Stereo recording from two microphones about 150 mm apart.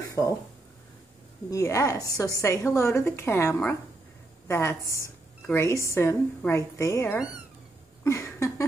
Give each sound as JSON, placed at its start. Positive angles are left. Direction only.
{"t": 0.2, "sound": "a woman's voice", "side_deg": 20}
{"t": 1.5, "sound": "a woman's voice", "side_deg": 20}
{"t": 4.8, "sound": "speech", "side_deg": -20}
{"t": 5.5, "sound": "a woman's voice", "side_deg": 20}
{"t": 8.0, "sound": "a sound", "side_deg": 20}